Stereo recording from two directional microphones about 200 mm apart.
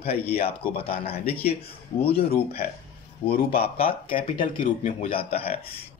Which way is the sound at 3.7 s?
25° left (ahead or behind).